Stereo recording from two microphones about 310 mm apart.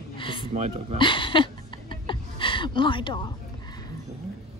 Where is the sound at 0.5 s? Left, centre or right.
Right.